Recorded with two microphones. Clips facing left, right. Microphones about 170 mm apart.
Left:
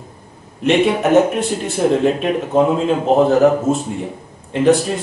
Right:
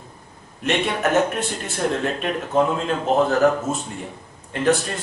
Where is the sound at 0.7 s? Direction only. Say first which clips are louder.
Left 8 dB; 5° left (ahead or behind).